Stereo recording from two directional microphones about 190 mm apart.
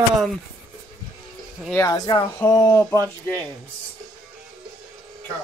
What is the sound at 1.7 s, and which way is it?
Speech, 15° left (ahead or behind).